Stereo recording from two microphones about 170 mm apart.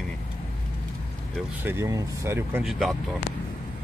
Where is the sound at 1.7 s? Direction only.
15° right (ahead or behind).